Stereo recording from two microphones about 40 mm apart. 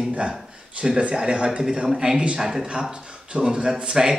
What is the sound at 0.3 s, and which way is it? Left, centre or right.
A man's voice, right.